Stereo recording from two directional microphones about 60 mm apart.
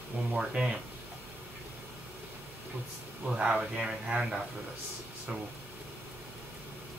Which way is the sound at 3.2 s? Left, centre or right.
Centre.